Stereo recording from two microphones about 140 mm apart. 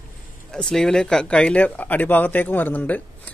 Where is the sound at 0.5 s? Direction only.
5° left (ahead or behind).